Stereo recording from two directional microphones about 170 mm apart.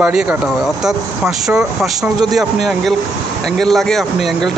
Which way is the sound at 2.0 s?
25° right (ahead or behind).